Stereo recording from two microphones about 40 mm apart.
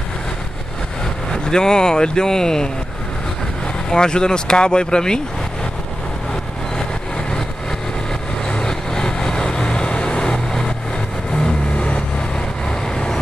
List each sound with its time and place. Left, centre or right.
1.3 s speech: left
3.9 s speech: centre
6.8 s vehicle: centre
8.5 s vehicle: centre